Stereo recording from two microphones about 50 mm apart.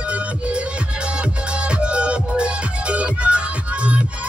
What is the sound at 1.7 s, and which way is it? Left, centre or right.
Music, right.